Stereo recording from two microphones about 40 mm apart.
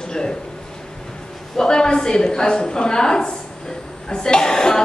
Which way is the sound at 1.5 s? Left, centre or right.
Centre.